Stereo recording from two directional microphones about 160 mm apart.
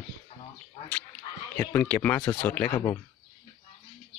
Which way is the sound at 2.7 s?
25° left (ahead or behind).